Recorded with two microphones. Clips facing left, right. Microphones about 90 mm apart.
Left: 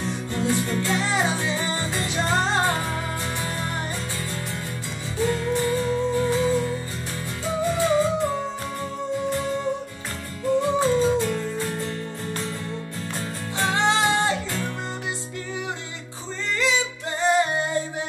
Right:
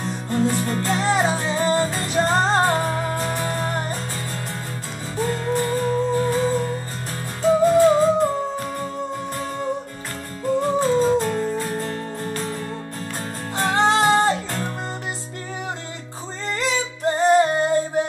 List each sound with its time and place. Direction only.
0.0 s music: 40° right (ahead or behind)
5.1 s music: 40° right (ahead or behind)
10.6 s music: 45° right (ahead or behind)
13.6 s music: 45° right (ahead or behind)
16.4 s music: 40° right (ahead or behind)